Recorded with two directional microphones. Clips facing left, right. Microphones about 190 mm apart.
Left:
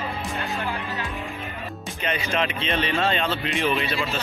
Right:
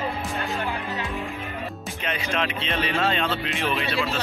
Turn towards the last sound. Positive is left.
turn(degrees=0)  # may be behind; listen again after turning